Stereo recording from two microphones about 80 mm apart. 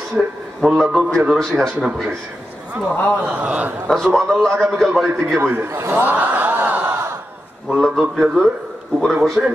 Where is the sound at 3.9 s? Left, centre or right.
Centre.